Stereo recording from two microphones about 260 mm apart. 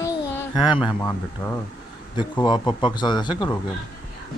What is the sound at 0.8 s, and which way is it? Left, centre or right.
A man's voice, centre.